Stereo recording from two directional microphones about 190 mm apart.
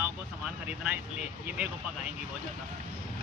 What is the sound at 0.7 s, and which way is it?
Speech, 5° right (ahead or behind).